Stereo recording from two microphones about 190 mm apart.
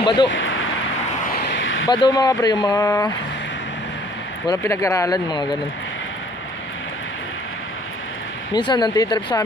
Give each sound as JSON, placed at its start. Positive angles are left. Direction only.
{"t": 0.0, "sound": "speech", "side_deg": 25}
{"t": 0.3, "sound": "a sound", "side_deg": 90}
{"t": 1.4, "sound": "a sound", "side_deg": 75}
{"t": 1.9, "sound": "speech", "side_deg": 20}
{"t": 4.5, "sound": "speech", "side_deg": 15}
{"t": 8.5, "sound": "speech", "side_deg": 25}